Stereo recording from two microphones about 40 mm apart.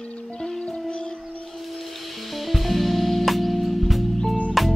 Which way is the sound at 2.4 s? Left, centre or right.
Centre.